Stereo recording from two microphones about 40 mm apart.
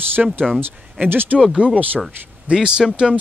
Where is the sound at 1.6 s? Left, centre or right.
Right.